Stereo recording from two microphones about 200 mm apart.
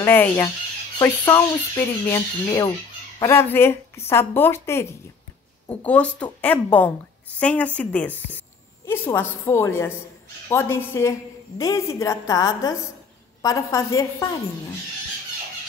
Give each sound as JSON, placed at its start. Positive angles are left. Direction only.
{"t": 0.0, "sound": "a woman's voice", "side_deg": 10}